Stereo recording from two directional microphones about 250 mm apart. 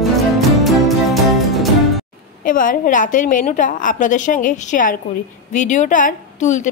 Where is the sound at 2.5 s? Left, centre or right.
Left.